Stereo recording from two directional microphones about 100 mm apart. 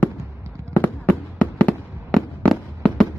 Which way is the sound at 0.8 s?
15° left (ahead or behind).